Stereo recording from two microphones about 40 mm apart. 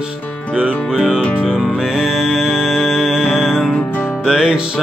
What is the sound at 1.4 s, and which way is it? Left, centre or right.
Music, right.